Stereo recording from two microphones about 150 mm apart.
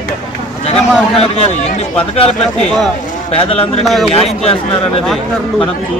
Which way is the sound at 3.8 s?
Centre (ahead or behind).